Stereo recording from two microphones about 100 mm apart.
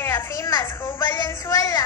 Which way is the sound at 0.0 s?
25° left (ahead or behind).